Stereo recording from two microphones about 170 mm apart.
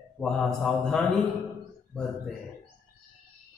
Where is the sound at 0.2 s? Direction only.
5° left (ahead or behind).